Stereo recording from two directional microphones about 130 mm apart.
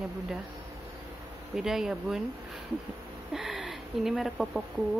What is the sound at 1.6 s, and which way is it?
Speech, 5° right (ahead or behind).